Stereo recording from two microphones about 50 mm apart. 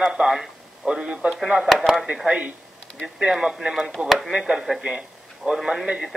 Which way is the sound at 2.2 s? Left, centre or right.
Right.